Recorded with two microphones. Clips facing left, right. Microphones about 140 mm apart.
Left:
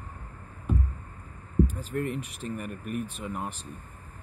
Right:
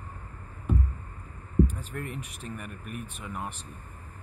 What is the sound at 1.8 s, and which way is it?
Speech, 35° left (ahead or behind).